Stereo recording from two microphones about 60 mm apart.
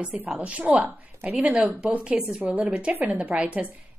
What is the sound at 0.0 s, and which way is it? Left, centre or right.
Speech, right.